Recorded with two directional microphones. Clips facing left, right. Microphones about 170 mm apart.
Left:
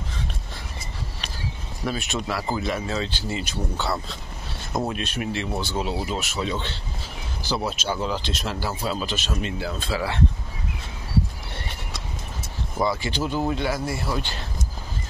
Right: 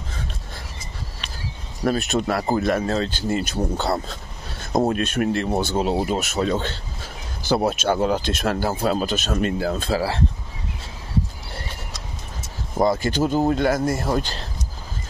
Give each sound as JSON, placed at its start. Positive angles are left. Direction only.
{"t": 1.9, "sound": "speech", "side_deg": -45}
{"t": 12.7, "sound": "speech", "side_deg": -45}